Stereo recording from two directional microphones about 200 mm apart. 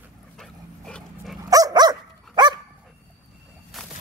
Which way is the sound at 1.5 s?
20° right (ahead or behind).